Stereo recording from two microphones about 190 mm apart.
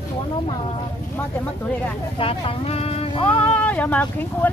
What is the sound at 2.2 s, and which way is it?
Speech, 30° left (ahead or behind).